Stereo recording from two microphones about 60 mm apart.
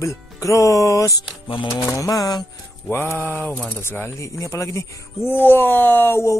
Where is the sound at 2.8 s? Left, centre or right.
Left.